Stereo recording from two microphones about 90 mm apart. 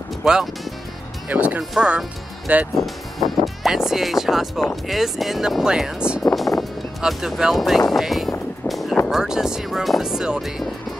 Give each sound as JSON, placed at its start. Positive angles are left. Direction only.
{"t": 0.2, "sound": "speech", "side_deg": -5}
{"t": 1.3, "sound": "speech", "side_deg": -15}
{"t": 1.6, "sound": "speech", "side_deg": 0}
{"t": 1.9, "sound": "speech", "side_deg": -15}
{"t": 2.7, "sound": "speech", "side_deg": 0}
{"t": 6.2, "sound": "music", "side_deg": 0}
{"t": 7.0, "sound": "speech", "side_deg": -5}
{"t": 7.9, "sound": "a sound", "side_deg": 0}
{"t": 9.1, "sound": "speech", "side_deg": -5}